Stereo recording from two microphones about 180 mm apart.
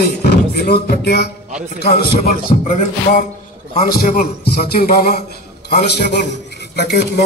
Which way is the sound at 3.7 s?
50° left (ahead or behind).